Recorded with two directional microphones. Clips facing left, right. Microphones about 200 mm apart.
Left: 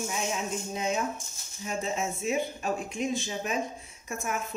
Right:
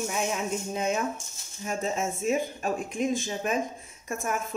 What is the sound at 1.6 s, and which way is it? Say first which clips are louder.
A woman's voice: right 2 dB; 45° right (ahead or behind).